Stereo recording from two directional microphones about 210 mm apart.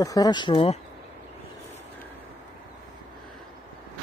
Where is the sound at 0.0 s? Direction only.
15° left (ahead or behind).